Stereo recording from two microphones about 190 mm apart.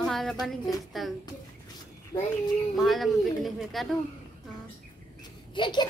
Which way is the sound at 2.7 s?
Centre (ahead or behind).